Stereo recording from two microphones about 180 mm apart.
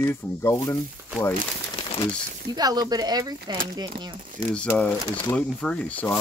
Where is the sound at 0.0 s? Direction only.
15° left (ahead or behind).